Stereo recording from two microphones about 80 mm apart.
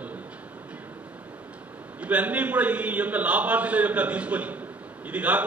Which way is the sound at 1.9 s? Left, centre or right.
Centre.